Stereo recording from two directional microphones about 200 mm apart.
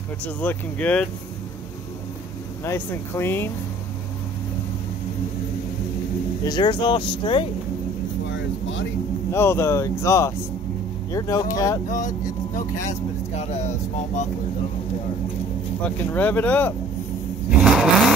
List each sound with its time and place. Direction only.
0.2 s speech: 10° left (ahead or behind)
2.6 s speech: 10° left (ahead or behind)
6.4 s speech: 20° left (ahead or behind)
8.3 s vehicle: 65° left (ahead or behind)
9.3 s speech: 15° left (ahead or behind)
11.9 s speech: 40° left (ahead or behind)
15.8 s speech: 10° left (ahead or behind)
17.5 s vehicle: 5° right (ahead or behind)